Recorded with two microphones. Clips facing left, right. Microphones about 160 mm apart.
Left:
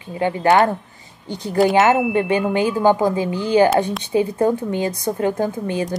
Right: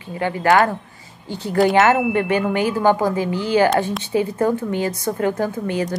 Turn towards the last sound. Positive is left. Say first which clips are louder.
# even
turn(degrees=20)  # may be behind; listen again after turning